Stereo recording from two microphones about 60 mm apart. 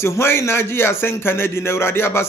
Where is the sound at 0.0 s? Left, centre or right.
Left.